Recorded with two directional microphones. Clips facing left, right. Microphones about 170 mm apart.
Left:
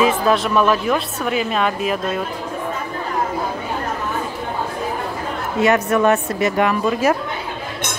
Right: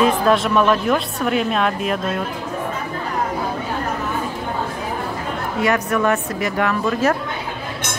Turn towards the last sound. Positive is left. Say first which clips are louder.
# left 1 dB
turn(degrees=10)  # may be behind; listen again after turning